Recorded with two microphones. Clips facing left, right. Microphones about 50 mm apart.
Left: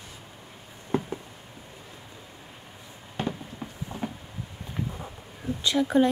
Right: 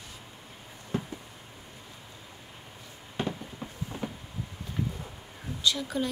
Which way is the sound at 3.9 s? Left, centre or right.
Centre.